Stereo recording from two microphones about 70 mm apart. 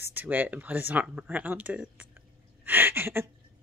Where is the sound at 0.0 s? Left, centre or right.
Right.